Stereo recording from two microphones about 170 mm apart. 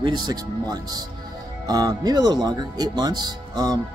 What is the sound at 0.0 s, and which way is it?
Speech, 25° right (ahead or behind).